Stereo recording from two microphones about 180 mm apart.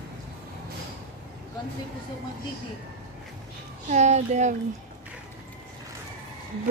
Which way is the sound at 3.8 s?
40° right (ahead or behind).